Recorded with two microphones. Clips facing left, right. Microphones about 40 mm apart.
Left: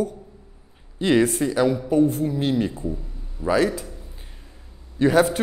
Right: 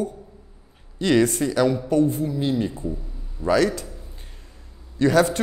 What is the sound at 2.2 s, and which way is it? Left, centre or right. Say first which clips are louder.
Speech: left 1 dB; left.